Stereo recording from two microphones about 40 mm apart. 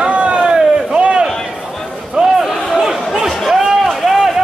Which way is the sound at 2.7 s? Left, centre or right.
Centre.